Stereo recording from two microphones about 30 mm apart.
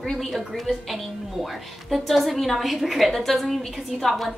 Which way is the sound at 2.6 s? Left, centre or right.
Centre.